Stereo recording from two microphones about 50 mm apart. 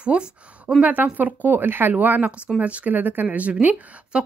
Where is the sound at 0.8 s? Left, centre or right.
Right.